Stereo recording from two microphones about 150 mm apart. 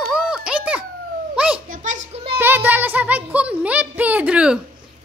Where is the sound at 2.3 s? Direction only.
15° right (ahead or behind).